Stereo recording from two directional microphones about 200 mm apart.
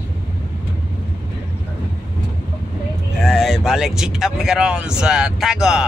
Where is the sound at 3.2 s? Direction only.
Centre (ahead or behind).